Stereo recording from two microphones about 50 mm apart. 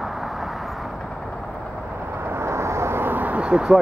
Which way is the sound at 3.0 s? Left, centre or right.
Right.